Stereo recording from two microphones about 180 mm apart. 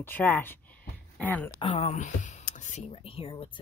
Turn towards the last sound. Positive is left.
turn(degrees=30)  # may be behind; listen again after turning